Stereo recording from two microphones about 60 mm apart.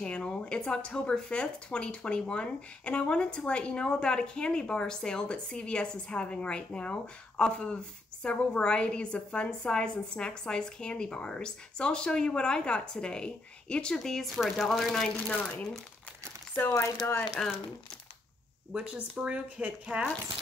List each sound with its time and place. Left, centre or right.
0.0 s speech: centre
15.2 s speech: centre
17.0 s speech: left
18.7 s speech: centre